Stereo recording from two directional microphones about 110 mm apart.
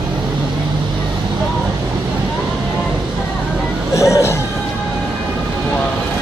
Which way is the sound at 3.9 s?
25° left (ahead or behind).